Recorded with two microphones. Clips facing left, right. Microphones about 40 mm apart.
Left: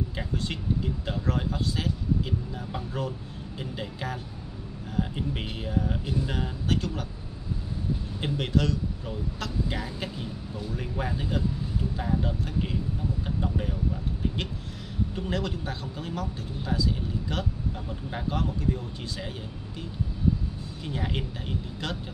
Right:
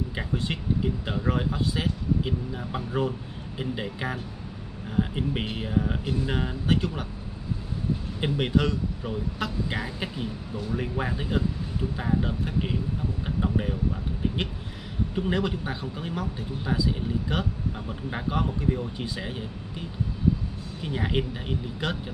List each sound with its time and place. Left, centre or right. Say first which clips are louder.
0.1 s speech: right 2 dB; centre
8.2 s speech: right 3 dB; centre
15.1 s speech: right 6 dB; centre